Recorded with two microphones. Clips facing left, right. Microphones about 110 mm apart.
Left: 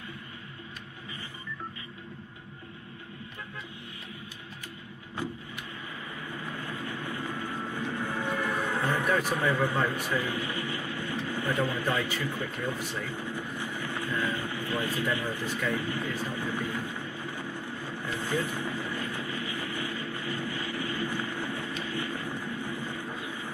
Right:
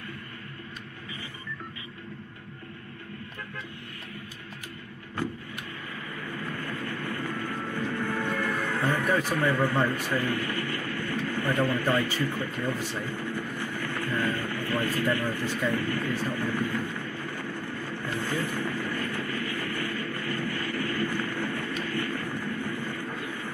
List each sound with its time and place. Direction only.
6.3 s vehicle: 20° left (ahead or behind)